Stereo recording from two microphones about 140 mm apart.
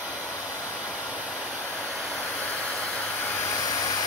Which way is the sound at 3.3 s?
25° left (ahead or behind).